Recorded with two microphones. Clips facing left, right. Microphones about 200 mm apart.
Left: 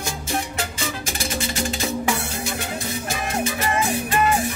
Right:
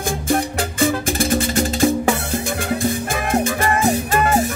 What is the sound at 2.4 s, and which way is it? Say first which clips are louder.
Music: right 7 dB; 55° right (ahead or behind).